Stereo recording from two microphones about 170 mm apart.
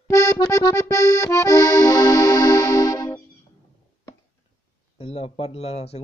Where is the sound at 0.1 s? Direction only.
20° left (ahead or behind).